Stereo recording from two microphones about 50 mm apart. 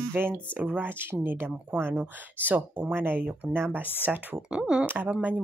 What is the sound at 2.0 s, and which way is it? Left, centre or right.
Speech, right.